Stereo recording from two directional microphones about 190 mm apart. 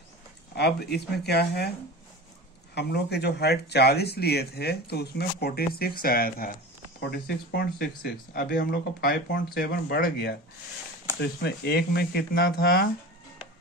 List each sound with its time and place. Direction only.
0.6 s speech: 60° left (ahead or behind)
2.7 s speech: 60° left (ahead or behind)